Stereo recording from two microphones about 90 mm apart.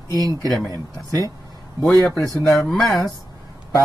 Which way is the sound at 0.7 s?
40° right (ahead or behind).